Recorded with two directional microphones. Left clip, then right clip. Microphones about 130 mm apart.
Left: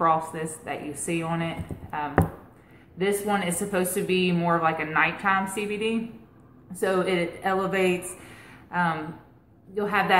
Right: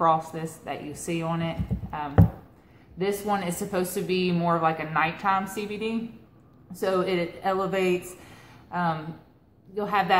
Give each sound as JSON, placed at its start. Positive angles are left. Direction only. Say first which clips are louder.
{"t": 0.0, "sound": "a woman's voice", "louder": "even", "side_deg": -30}
{"t": 9.8, "sound": "a woman's voice", "louder": "left 1 dB", "side_deg": -30}